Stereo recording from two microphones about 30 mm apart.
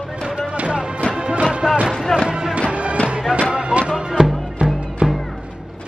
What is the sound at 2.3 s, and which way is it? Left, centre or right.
Music, right.